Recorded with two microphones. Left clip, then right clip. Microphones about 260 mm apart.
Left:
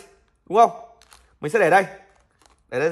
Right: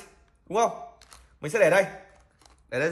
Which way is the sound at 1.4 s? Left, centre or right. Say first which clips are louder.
Left 4 dB; left.